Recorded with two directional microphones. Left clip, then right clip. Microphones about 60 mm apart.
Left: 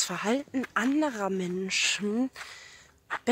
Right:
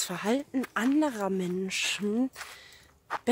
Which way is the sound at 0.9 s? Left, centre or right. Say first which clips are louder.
Even; right.